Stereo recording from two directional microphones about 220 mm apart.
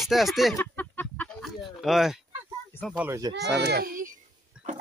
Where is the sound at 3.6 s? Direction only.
45° right (ahead or behind).